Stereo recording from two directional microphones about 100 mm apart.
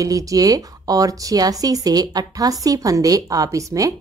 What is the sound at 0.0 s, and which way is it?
Speech, 35° right (ahead or behind).